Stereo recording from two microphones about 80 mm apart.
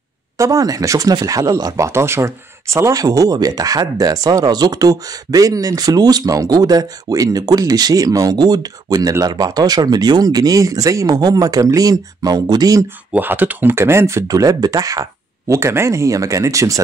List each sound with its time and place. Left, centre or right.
0.4 s speech: right
1.9 s speech: right
11.1 s speech: right
13.1 s speech: right